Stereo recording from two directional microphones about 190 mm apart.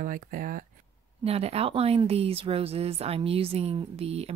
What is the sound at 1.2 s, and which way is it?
Speech, 30° right (ahead or behind).